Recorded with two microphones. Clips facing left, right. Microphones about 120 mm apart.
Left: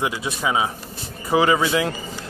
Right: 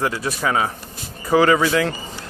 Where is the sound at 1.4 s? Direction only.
25° left (ahead or behind).